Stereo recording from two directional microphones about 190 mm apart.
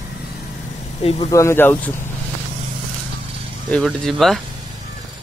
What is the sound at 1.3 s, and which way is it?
Speech, 15° left (ahead or behind).